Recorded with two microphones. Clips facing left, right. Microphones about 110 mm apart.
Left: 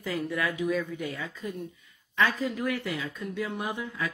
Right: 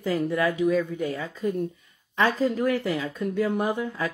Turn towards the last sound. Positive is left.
turn(degrees=-40)  # may be behind; listen again after turning